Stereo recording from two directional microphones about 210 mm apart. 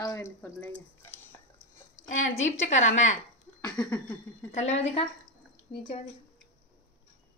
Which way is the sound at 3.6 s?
20° left (ahead or behind).